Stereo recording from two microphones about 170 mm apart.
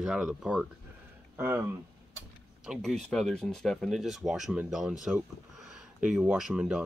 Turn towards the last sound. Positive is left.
turn(degrees=-5)  # may be behind; listen again after turning